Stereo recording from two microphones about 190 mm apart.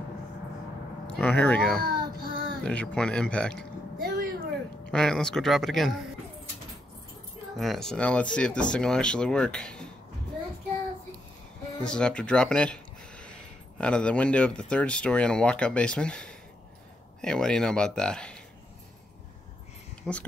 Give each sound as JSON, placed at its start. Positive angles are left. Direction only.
{"t": 1.0, "sound": "speech", "side_deg": 5}
{"t": 1.8, "sound": "child singing", "side_deg": -50}
{"t": 2.6, "sound": "speech", "side_deg": 5}
{"t": 4.0, "sound": "a sound", "side_deg": -50}
{"t": 4.9, "sound": "speech", "side_deg": 5}
{"t": 7.5, "sound": "speech", "side_deg": 0}
{"t": 11.8, "sound": "speech", "side_deg": 5}
{"t": 20.0, "sound": "speech", "side_deg": 5}